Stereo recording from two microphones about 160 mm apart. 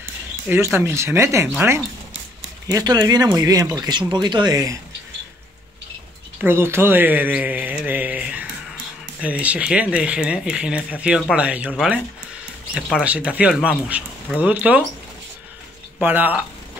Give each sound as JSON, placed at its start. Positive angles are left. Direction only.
{"t": 0.5, "sound": "speech", "side_deg": -15}
{"t": 6.4, "sound": "speech", "side_deg": -15}
{"t": 16.0, "sound": "speech", "side_deg": -10}